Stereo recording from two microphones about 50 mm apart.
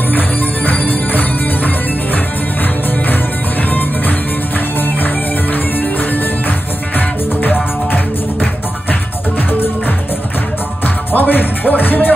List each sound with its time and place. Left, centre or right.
0.7 s music: left
11.1 s music: left